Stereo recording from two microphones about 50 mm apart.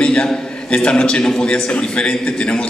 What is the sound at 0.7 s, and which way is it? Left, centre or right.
A man's voice, left.